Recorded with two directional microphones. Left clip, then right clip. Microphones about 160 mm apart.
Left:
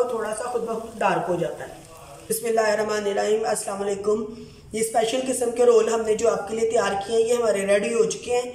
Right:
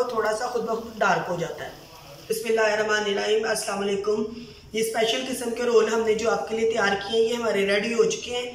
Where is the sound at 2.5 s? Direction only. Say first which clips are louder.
Even; 35° left (ahead or behind).